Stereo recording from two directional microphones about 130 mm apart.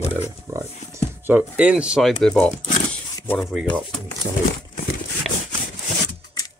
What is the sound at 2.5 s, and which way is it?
Speech, 70° left (ahead or behind).